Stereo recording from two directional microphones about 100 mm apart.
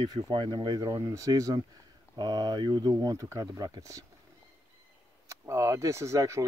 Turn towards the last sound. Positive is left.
turn(degrees=-35)  # may be behind; listen again after turning